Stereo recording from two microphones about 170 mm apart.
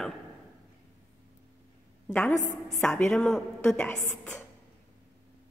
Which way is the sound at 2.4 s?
45° left (ahead or behind).